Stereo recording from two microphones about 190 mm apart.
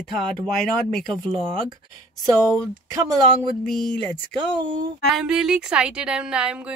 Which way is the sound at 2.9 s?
20° right (ahead or behind).